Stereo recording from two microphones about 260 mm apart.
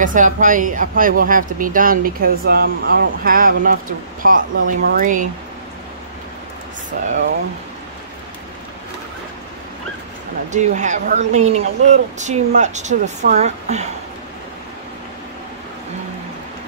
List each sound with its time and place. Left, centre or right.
0.0 s speech: right
10.5 s speech: right